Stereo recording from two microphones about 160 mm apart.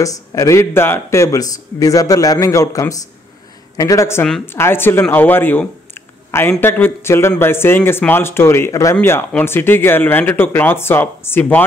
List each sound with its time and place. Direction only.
0.0 s a man's voice: 20° left (ahead or behind)